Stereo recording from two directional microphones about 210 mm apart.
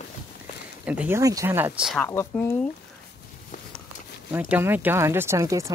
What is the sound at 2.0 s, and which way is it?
Speech, 10° left (ahead or behind).